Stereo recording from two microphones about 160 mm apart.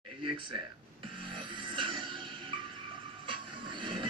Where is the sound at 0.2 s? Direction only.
30° right (ahead or behind).